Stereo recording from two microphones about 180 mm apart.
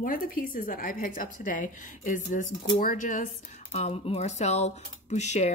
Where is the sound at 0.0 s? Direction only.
50° left (ahead or behind).